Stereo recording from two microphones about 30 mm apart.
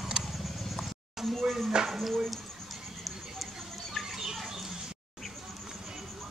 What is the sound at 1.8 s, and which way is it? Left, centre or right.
Speech, centre.